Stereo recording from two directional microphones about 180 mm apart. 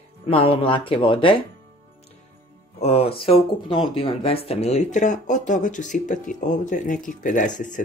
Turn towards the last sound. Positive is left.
turn(degrees=45)  # may be behind; listen again after turning